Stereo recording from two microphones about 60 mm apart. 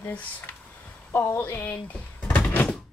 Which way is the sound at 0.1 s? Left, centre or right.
Left.